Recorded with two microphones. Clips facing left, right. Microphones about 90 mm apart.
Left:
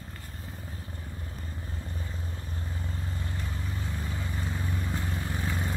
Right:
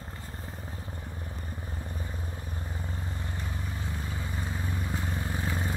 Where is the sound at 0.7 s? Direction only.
20° right (ahead or behind); by 4.1 s 5° right (ahead or behind).